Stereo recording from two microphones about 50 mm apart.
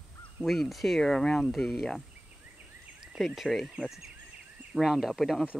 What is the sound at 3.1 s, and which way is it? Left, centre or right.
Speech, centre.